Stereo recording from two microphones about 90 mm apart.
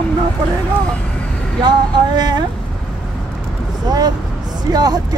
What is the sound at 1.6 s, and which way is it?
Speech, 55° right (ahead or behind).